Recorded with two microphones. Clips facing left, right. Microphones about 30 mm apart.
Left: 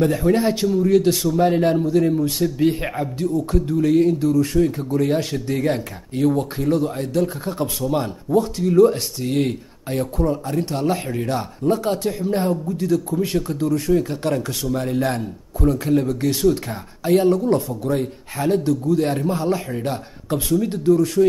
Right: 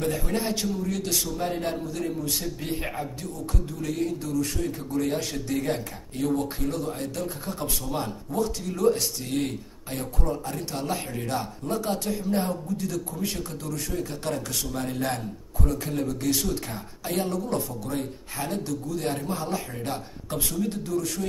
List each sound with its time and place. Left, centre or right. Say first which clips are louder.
0.0 s speech: left 10 dB; left
2.3 s speech: left 13 dB; centre
2.8 s speech: left 9 dB; left
12.6 s speech: left 9 dB; left
20.6 s speech: left 12 dB; left